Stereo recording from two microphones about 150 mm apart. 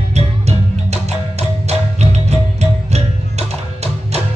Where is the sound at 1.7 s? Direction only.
45° right (ahead or behind).